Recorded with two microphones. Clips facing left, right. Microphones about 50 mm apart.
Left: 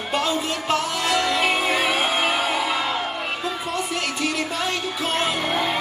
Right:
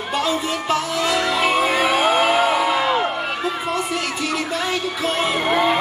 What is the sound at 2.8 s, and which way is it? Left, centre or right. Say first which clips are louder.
Music: right 6 dB; right.